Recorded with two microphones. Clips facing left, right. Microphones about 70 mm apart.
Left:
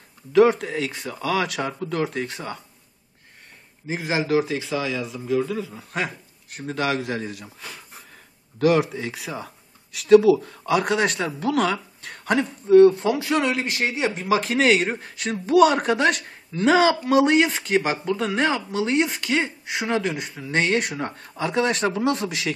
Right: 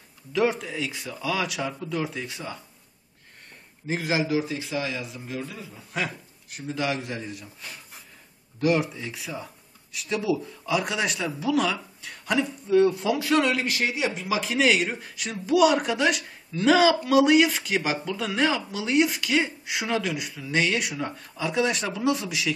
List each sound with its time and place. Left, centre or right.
0.3 s speech: left
4.0 s speech: left
4.3 s speech: left
6.5 s speech: left
8.5 s speech: left
13.2 s speech: centre; by 22.5 s left